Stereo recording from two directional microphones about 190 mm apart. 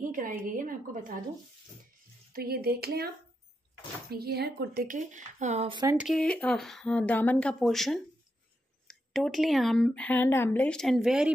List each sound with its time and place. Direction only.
0.1 s a woman's voice: 45° right (ahead or behind)
2.3 s a sound: 55° right (ahead or behind)
4.1 s a woman's voice: 55° right (ahead or behind); by 5.8 s 35° right (ahead or behind)
5.9 s speech: centre (ahead or behind)